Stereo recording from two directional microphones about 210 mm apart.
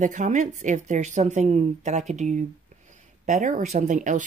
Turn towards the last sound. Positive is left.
turn(degrees=-35)  # may be behind; listen again after turning